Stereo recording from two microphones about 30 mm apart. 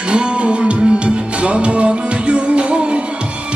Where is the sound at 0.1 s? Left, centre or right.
Right.